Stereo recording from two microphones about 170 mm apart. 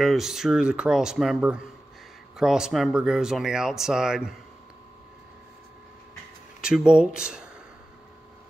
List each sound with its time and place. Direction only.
0.0 s speech: centre (ahead or behind)
6.6 s speech: 5° right (ahead or behind)